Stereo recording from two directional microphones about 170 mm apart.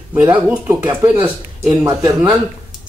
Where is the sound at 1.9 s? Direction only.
20° right (ahead or behind).